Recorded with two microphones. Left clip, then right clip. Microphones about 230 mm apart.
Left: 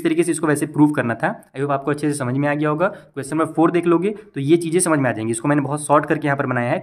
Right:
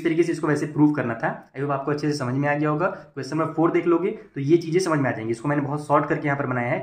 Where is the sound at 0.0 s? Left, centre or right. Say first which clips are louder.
Left 3 dB; left.